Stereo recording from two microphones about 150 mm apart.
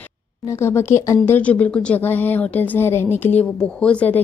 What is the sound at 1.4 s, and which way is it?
A woman's voice, 10° left (ahead or behind).